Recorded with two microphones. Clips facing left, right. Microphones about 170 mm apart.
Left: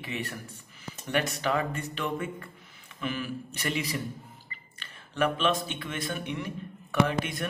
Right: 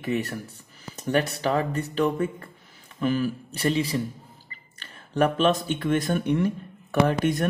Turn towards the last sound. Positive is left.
turn(degrees=-40)  # may be behind; listen again after turning